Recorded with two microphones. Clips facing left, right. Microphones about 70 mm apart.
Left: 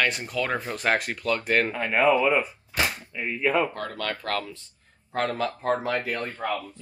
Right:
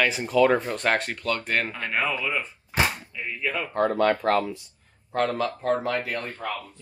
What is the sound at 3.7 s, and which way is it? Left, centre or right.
Speech, right.